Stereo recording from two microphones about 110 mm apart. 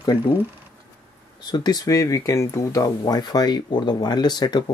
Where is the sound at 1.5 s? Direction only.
40° left (ahead or behind).